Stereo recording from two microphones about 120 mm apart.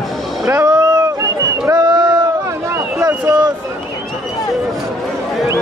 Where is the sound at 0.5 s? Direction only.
20° right (ahead or behind).